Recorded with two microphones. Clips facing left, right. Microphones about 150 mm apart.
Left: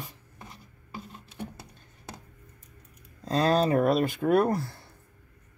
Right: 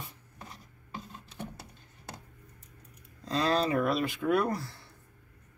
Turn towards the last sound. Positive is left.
turn(degrees=50)  # may be behind; listen again after turning